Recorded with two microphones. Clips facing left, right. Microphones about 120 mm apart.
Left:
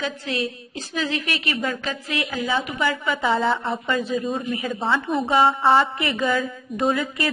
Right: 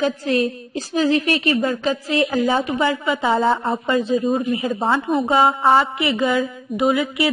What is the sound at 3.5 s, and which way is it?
A woman's voice, 35° right (ahead or behind).